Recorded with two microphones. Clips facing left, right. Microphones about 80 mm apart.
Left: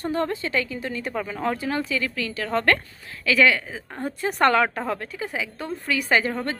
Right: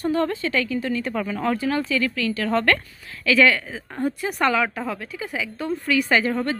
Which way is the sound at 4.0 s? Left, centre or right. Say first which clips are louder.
Left 1 dB; left.